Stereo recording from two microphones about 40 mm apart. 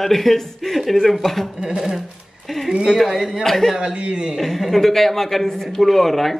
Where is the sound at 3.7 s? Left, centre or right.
Right.